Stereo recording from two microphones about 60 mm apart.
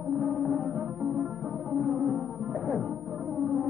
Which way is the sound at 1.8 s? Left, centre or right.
Centre.